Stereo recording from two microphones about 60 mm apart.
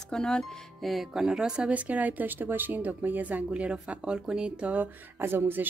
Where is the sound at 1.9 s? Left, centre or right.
Right.